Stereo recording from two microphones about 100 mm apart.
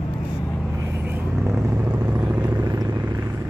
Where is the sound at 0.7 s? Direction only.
30° right (ahead or behind).